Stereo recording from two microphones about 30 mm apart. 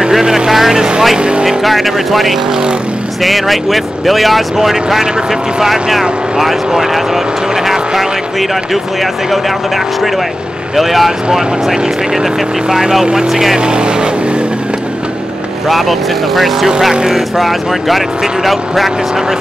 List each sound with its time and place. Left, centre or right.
0.2 s speech: centre
0.7 s speech: right
1.6 s speech: centre
7.7 s vehicle: centre
10.8 s speech: centre
13.6 s speech: right
15.7 s speech: centre